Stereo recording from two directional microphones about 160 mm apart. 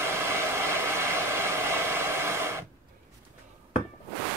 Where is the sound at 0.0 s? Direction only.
15° right (ahead or behind).